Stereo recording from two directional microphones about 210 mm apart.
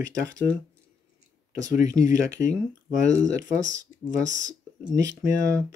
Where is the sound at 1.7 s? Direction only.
15° right (ahead or behind).